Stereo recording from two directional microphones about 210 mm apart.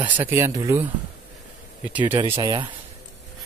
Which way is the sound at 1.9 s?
5° right (ahead or behind).